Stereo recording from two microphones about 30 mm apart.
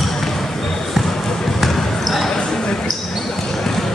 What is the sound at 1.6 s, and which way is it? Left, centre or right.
Basketball bounce, centre.